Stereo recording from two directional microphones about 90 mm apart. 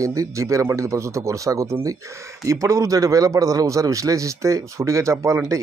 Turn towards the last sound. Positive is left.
turn(degrees=-35)  # may be behind; listen again after turning